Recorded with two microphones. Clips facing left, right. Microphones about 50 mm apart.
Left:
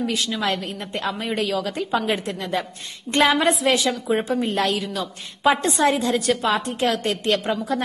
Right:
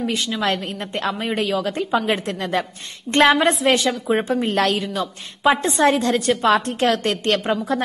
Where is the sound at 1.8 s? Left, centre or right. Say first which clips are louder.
Right 2 dB; centre.